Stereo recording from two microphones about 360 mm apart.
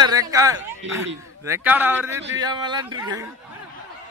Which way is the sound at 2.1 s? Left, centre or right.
Right.